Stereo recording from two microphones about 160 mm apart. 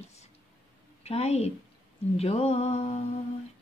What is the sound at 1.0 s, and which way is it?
Speech, 40° left (ahead or behind).